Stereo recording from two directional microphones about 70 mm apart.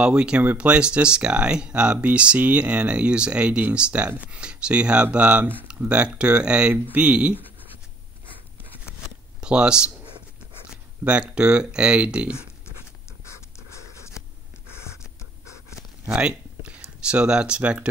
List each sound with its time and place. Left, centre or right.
0.0 s speech: centre
9.4 s speech: centre
11.1 s speech: centre
16.1 s speech: centre